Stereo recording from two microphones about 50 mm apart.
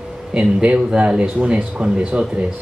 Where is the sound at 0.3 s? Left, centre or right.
Right.